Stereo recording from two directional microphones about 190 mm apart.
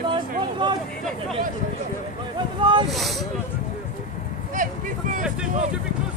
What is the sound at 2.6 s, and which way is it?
Speech, 25° right (ahead or behind).